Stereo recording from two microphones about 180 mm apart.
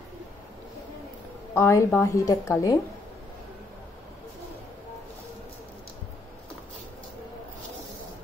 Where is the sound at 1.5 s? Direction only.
15° left (ahead or behind).